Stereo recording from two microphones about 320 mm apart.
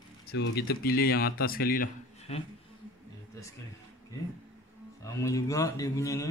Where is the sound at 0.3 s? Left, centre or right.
Left.